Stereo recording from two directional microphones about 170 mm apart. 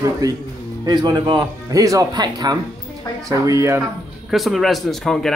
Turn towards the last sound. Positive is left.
turn(degrees=0)  # may be behind; listen again after turning